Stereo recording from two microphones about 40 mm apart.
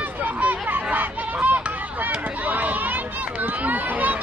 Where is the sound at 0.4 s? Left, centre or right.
Right.